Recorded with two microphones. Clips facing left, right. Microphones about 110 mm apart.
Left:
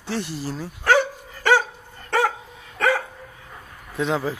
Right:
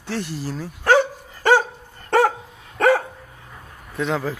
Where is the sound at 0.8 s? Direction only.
30° right (ahead or behind).